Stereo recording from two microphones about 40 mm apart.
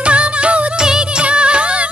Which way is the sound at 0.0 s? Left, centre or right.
Right.